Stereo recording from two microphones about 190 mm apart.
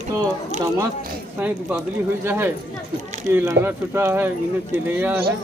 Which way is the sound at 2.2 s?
10° right (ahead or behind).